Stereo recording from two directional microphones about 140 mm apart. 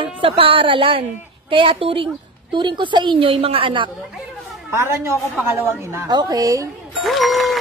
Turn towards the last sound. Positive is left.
turn(degrees=0)  # may be behind; listen again after turning